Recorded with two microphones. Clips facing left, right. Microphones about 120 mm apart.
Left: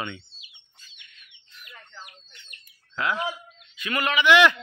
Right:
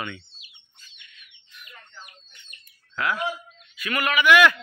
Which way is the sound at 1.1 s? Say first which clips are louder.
Right 2 dB; 35° left (ahead or behind).